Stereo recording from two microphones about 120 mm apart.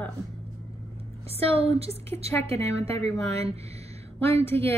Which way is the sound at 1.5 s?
55° right (ahead or behind).